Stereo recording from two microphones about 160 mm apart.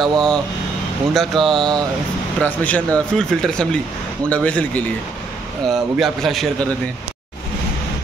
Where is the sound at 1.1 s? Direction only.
Centre (ahead or behind).